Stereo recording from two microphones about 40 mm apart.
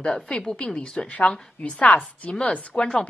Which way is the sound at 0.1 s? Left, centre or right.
Centre.